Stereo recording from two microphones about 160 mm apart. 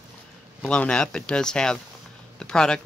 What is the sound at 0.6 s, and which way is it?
Speech, 5° left (ahead or behind).